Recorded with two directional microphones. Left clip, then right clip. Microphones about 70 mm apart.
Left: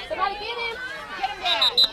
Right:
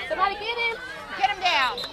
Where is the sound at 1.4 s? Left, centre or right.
Right.